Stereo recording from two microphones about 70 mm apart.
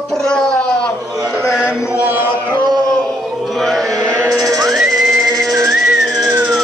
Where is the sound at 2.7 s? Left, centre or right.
Right.